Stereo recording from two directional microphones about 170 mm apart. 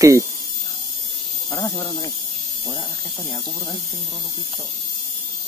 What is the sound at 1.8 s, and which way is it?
Speech, 20° left (ahead or behind).